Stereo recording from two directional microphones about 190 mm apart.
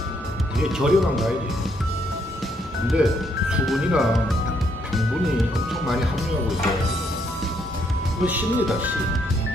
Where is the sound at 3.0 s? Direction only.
5° right (ahead or behind).